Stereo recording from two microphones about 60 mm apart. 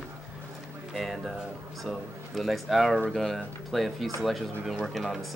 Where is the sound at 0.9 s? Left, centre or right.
Centre.